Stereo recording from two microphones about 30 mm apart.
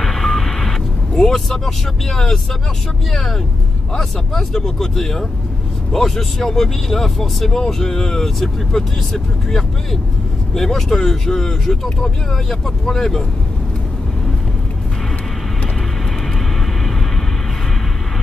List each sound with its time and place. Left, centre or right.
0.0 s reversing beeps: centre
1.1 s speech: left
12.8 s speech: centre